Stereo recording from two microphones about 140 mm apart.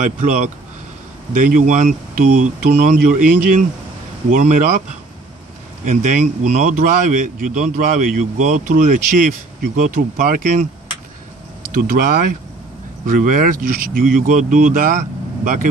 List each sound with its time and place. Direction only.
0.0 s a man's voice: 65° right (ahead or behind)
5.9 s a man's voice: 60° right (ahead or behind); by 10.7 s 75° right (ahead or behind)
11.7 s a man's voice: 90° right; by 15.7 s 75° right (ahead or behind)